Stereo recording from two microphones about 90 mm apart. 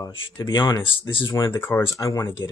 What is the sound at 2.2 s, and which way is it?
Speech, 60° left (ahead or behind).